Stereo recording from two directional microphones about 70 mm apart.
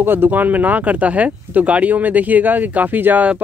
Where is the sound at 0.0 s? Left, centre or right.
Right.